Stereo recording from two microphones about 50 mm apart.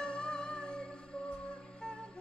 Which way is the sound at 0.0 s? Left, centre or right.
Centre.